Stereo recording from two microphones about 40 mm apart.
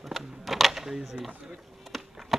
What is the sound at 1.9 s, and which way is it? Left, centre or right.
Insect, centre.